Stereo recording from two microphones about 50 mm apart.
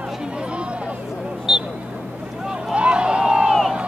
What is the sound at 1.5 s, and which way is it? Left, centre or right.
Vehicle, centre.